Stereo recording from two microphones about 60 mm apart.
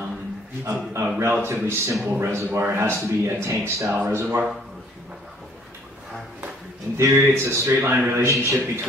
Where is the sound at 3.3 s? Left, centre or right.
Right.